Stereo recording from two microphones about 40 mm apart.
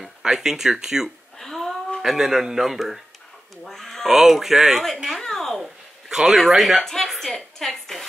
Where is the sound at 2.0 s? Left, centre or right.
Centre.